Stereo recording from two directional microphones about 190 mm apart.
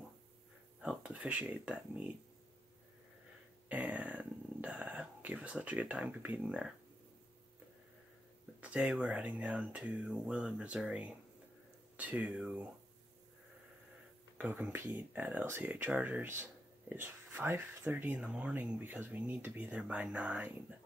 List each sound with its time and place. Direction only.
0.7 s speech: 5° right (ahead or behind)
3.6 s speech: 10° right (ahead or behind)
8.5 s speech: 5° right (ahead or behind)
14.4 s speech: 10° right (ahead or behind)